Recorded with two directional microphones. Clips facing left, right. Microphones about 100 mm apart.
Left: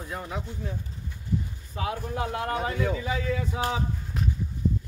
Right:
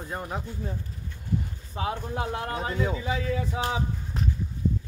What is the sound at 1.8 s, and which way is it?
Speech, 30° right (ahead or behind).